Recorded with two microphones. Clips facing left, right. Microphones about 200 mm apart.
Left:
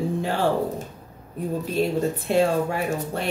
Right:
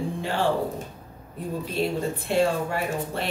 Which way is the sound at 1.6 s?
45° left (ahead or behind).